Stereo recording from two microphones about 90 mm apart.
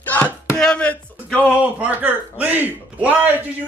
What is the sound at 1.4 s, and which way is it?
Speech, 15° right (ahead or behind).